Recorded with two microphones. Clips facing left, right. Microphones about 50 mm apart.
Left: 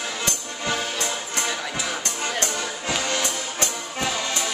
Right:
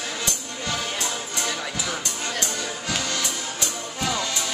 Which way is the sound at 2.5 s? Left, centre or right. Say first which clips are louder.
Left 2 dB; left.